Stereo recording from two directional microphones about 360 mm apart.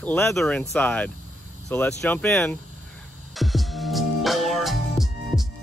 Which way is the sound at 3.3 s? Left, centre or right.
Centre.